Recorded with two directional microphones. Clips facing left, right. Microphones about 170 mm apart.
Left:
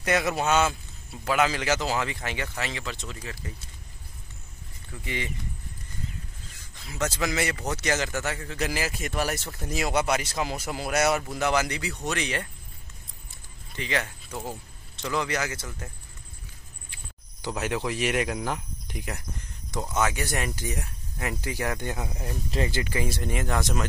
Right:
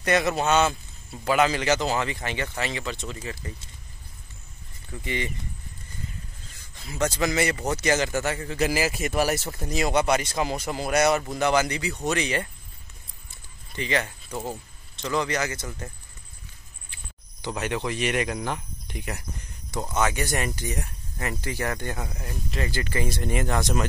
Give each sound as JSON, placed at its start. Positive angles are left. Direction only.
{"t": 0.0, "sound": "a man's voice", "side_deg": 5}
{"t": 5.0, "sound": "speech", "side_deg": 0}
{"t": 6.9, "sound": "speech", "side_deg": 0}
{"t": 9.7, "sound": "speech", "side_deg": 5}
{"t": 13.7, "sound": "speech", "side_deg": 0}
{"t": 15.0, "sound": "a man's voice", "side_deg": 5}
{"t": 17.4, "sound": "speech", "side_deg": 5}
{"t": 22.5, "sound": "speech", "side_deg": 25}
{"t": 22.8, "sound": "speech", "side_deg": 10}